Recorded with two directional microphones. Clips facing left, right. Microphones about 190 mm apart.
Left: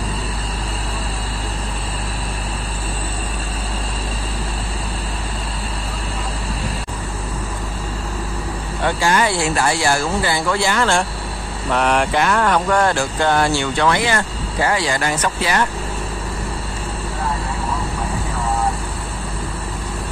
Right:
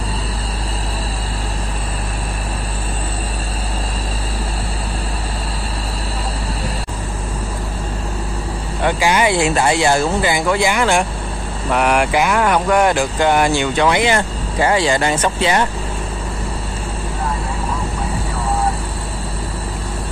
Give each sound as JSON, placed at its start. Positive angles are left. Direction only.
{"t": 8.8, "sound": "speech", "side_deg": -15}